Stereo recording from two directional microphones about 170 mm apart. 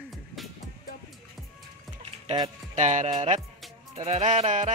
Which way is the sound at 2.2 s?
25° right (ahead or behind).